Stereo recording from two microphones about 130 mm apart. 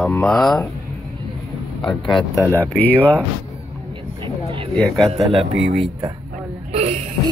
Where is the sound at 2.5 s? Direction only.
15° left (ahead or behind).